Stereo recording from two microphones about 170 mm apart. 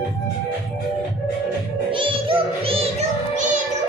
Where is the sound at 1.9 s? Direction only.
30° right (ahead or behind).